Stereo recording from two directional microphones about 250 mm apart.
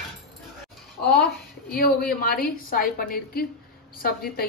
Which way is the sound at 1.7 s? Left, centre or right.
Left.